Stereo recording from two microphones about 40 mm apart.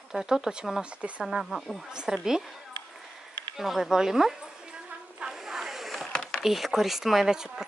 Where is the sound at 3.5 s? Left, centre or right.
Centre.